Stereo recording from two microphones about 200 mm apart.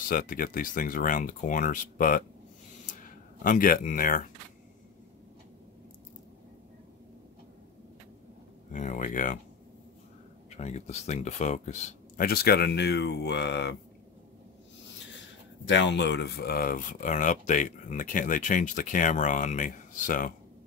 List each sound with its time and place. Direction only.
0.1 s speech: 45° left (ahead or behind)
3.4 s speech: 45° left (ahead or behind)
8.7 s speech: 40° left (ahead or behind)
10.5 s speech: 35° left (ahead or behind)
12.3 s speech: 50° left (ahead or behind)
15.6 s speech: 65° left (ahead or behind); by 20.3 s 40° left (ahead or behind)